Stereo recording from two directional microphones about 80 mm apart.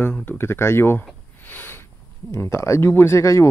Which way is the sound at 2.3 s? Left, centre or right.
Left.